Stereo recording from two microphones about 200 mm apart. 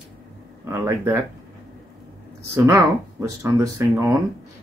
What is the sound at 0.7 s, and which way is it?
Speech, 10° right (ahead or behind).